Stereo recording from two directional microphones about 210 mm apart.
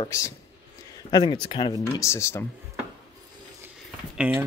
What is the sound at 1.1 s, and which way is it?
Speech, 20° left (ahead or behind).